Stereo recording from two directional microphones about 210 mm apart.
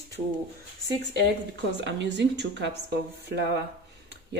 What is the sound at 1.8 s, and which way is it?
Speech, 55° right (ahead or behind).